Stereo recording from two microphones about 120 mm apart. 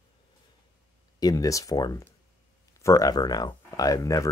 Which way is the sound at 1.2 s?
30° left (ahead or behind).